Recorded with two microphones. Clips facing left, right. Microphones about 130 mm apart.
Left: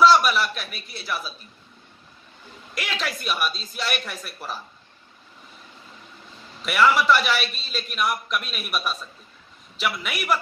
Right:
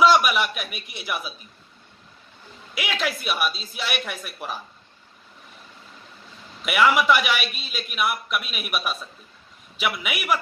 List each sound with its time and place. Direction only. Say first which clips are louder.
0.0 s a man's voice: left 1 dB; 10° right (ahead or behind)
2.7 s a man's voice: right 3 dB; 5° right (ahead or behind)
6.6 s a man's voice: even; 10° right (ahead or behind)